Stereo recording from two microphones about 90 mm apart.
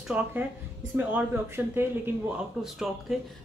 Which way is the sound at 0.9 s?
20° right (ahead or behind).